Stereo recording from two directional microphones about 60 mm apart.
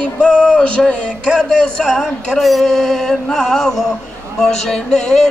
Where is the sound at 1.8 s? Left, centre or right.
Centre.